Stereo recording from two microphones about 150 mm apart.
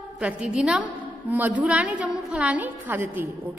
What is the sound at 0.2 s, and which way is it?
A woman's voice, 5° right (ahead or behind).